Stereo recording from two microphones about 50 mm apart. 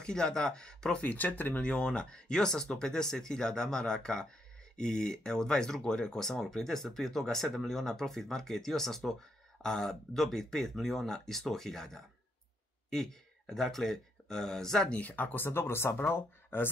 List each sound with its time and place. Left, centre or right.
0.0 s speech: centre
1.0 s speech: left
1.6 s speech: centre
14.9 s speech: left